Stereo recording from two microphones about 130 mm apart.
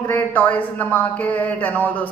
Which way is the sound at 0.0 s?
15° left (ahead or behind).